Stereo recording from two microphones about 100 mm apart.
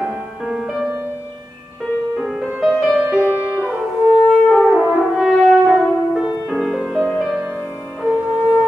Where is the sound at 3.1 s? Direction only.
20° right (ahead or behind).